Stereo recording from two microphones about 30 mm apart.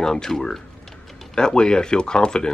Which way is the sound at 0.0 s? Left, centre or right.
Centre.